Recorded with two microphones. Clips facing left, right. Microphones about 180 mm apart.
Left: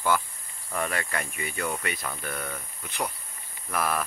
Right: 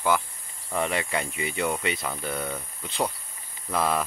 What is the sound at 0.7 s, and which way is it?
Speech, 20° right (ahead or behind).